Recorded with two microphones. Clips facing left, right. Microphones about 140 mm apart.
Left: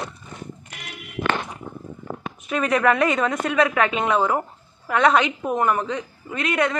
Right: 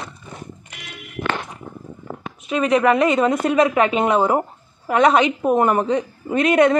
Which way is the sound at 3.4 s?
30° right (ahead or behind).